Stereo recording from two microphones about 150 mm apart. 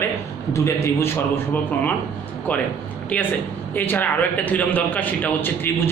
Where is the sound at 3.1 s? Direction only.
10° left (ahead or behind).